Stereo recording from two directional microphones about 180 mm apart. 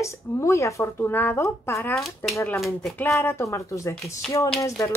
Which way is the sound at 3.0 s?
15° left (ahead or behind).